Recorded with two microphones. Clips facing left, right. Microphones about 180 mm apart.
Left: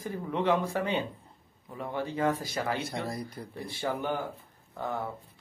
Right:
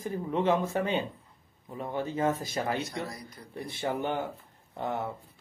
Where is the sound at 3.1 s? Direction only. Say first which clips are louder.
Left 7 dB; 30° left (ahead or behind).